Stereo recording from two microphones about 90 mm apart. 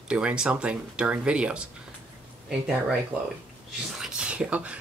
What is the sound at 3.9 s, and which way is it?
Speech, 5° right (ahead or behind).